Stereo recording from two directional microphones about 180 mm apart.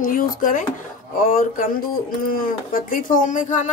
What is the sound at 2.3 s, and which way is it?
A woman's voice, 50° left (ahead or behind).